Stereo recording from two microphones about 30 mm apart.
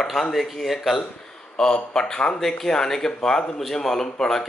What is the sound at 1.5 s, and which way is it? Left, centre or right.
Speech, left.